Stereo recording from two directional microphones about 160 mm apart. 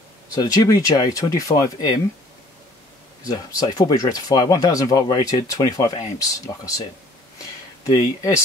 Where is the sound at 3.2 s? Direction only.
20° left (ahead or behind).